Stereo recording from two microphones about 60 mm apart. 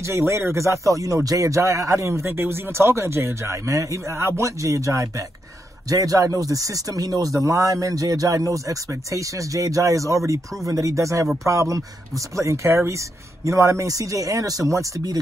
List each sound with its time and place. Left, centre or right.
0.0 s speech: right
3.6 s speech: right
5.9 s speech: right
7.4 s speech: right
10.7 s speech: right